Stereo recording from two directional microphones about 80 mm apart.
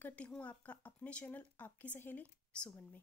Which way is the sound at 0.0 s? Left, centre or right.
Centre.